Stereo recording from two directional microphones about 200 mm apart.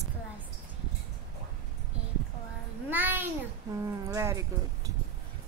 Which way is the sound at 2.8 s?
10° right (ahead or behind).